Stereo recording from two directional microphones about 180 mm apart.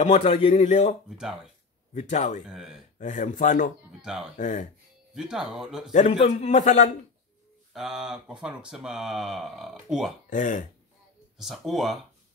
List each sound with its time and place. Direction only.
0.0 s a man's voice: 35° left (ahead or behind)
1.1 s speech: 5° right (ahead or behind)
2.0 s speech: 40° left (ahead or behind)
2.4 s speech: 5° right (ahead or behind)
3.0 s speech: 45° left (ahead or behind)
4.0 s speech: 5° right (ahead or behind)
4.4 s speech: 45° left (ahead or behind)
5.1 s speech: 5° right (ahead or behind)
5.9 s a man's voice: 35° left (ahead or behind)
7.7 s speech: centre (ahead or behind)
10.3 s speech: 45° left (ahead or behind)
11.3 s speech: centre (ahead or behind)